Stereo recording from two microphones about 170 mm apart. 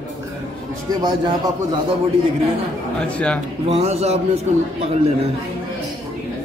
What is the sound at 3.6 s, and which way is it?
Speech, 40° right (ahead or behind).